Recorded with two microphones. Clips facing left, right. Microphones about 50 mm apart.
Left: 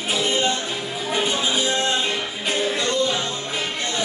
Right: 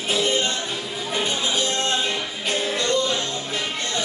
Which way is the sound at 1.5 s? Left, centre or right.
Centre.